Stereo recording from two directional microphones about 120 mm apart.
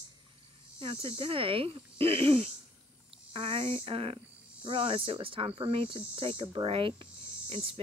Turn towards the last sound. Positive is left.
turn(degrees=-50)  # may be behind; listen again after turning